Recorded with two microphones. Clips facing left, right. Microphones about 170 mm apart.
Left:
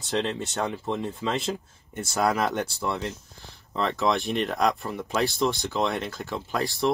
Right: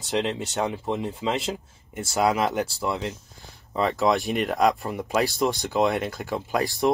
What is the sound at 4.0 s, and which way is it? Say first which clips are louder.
Speech: right 2 dB; 40° right (ahead or behind).